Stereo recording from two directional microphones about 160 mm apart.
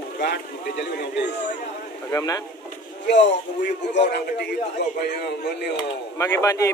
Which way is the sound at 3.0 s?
90° left.